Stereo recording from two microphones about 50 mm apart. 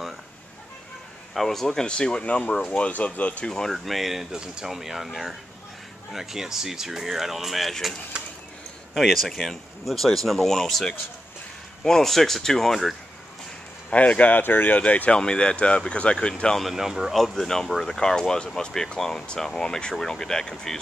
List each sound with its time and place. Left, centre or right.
1.3 s speech: centre
1.9 s speech: centre
2.8 s speech: left
3.4 s speech: centre
3.7 s speech: centre
8.2 s a sound: centre
8.9 s speech: centre
13.9 s speech: left
16.7 s speech: centre
17.1 s speech: centre